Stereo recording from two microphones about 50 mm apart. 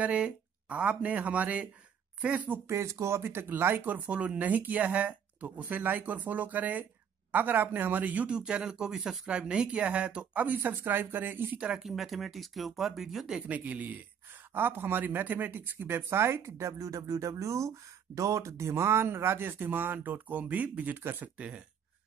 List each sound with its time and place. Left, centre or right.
0.0 s speech: right
2.7 s speech: right
8.4 s speech: centre
9.3 s speech: centre
10.6 s speech: right
11.5 s speech: right
11.8 s speech: centre
13.5 s speech: right
14.5 s speech: right
21.0 s speech: right
21.4 s speech: right